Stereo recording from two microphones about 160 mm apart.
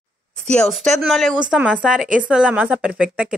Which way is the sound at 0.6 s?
Centre (ahead or behind).